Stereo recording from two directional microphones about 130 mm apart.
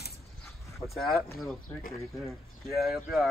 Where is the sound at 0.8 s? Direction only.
Centre (ahead or behind).